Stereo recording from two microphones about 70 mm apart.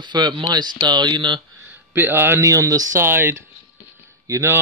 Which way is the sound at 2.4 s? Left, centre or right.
Right.